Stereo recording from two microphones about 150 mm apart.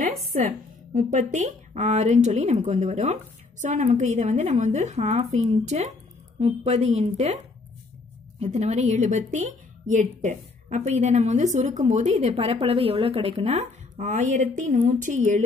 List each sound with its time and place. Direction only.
0.5 s a woman's voice: 55° right (ahead or behind)
8.4 s a woman's voice: 50° right (ahead or behind)